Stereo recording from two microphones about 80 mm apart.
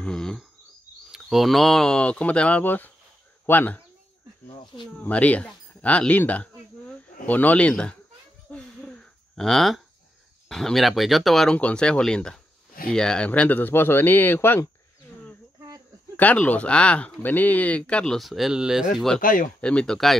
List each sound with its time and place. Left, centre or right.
0.0 s bird: centre
1.1 s speech: centre; by 3.8 s left
5.0 s speech: centre
8.5 s a sound: centre
10.5 s speech: centre
11.5 s speech: centre
16.2 s speech: centre
19.0 s speech: centre